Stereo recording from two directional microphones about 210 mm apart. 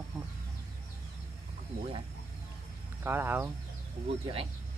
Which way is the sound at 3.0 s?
10° right (ahead or behind).